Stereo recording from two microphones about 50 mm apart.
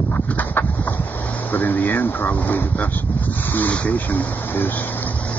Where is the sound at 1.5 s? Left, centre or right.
Left.